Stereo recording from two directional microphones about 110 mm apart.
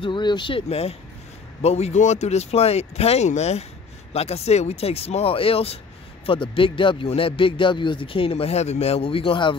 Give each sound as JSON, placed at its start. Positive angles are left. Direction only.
{"t": 0.0, "sound": "speech", "side_deg": 45}
{"t": 0.7, "sound": "speech", "side_deg": 65}